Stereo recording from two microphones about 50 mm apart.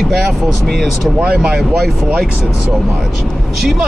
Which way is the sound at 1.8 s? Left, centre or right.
Centre.